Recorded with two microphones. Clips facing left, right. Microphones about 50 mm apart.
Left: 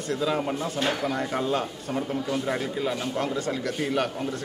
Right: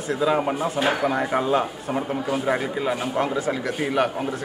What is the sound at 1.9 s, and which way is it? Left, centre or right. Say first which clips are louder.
A man's voice: right 3 dB; right.